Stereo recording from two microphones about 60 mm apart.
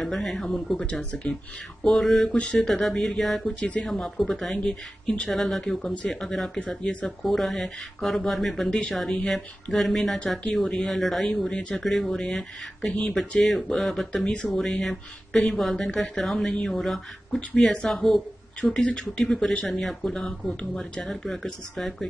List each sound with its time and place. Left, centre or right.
0.0 s speech: centre
0.8 s speech: centre
1.9 s speech: centre
2.3 s speech: left
2.6 s speech: centre
6.7 s speech: centre
7.1 s speech: centre
15.7 s speech: centre
16.0 s speech: centre
18.6 s speech: centre